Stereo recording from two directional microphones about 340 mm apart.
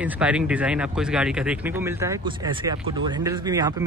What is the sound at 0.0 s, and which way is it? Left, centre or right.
Speech, centre.